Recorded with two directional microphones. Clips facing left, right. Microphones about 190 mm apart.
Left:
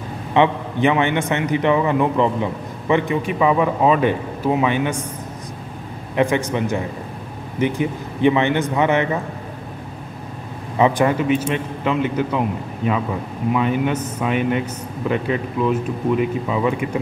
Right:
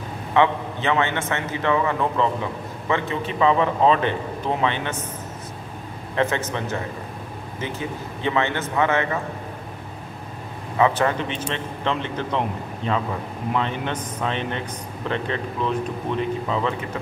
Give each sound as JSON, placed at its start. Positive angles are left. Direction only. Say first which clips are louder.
{"t": 0.3, "sound": "a man's voice", "louder": "left 2 dB", "side_deg": 15}
{"t": 6.1, "sound": "a man's voice", "louder": "left 5 dB", "side_deg": 15}
{"t": 10.8, "sound": "a man's voice", "louder": "left 4 dB", "side_deg": 15}